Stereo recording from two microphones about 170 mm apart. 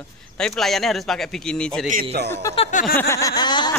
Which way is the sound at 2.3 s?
20° left (ahead or behind).